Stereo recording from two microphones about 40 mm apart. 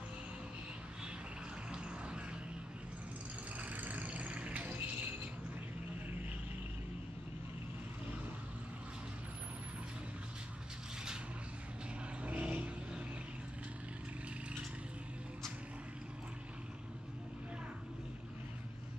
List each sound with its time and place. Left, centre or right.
3.7 s vehicle: right
12.2 s vehicle: right